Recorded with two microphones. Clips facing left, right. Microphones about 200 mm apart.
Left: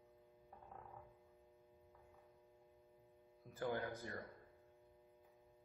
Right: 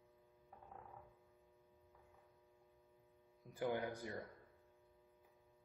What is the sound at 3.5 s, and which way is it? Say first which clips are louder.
Speech: right 2 dB; 15° right (ahead or behind).